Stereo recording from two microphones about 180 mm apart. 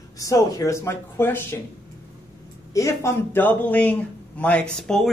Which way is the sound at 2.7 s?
15° left (ahead or behind).